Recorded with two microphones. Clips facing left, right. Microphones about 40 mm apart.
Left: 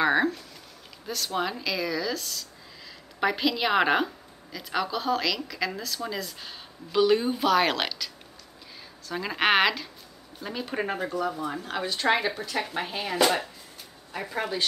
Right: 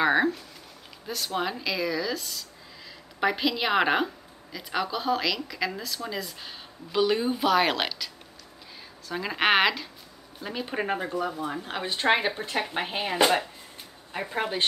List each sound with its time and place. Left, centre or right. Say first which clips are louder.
0.0 s a sound: even; centre
1.0 s a woman's voice: even; centre
9.1 s a woman's voice: even; centre; by 14.6 s right